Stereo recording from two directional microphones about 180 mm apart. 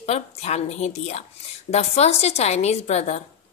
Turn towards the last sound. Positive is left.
turn(degrees=40)  # may be behind; listen again after turning